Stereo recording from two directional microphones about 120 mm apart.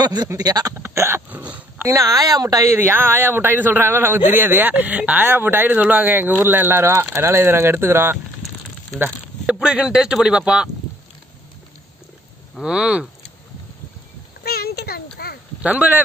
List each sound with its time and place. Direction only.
0.0 s speech: 35° right (ahead or behind)
0.7 s speech: 20° right (ahead or behind)
1.5 s dog: 20° right (ahead or behind)
2.0 s speech: 30° right (ahead or behind)
9.0 s speech: 10° right (ahead or behind)
12.5 s speech: 5° right (ahead or behind)
15.6 s speech: 15° right (ahead or behind)